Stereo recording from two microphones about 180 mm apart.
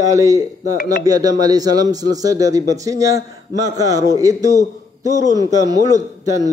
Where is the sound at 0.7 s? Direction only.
50° left (ahead or behind).